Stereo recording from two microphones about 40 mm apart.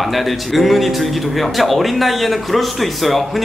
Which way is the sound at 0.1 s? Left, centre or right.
Centre.